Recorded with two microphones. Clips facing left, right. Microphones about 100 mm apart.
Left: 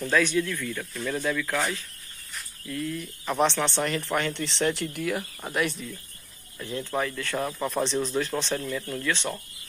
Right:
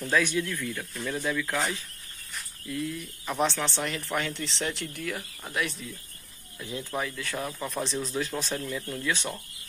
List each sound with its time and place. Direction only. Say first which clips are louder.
0.1 s speech: left 2 dB; 15° right (ahead or behind)
2.7 s speech: left 1 dB; 10° right (ahead or behind)
3.3 s speech: left 3 dB; centre (ahead or behind)
6.6 s speech: left 4 dB; 10° right (ahead or behind)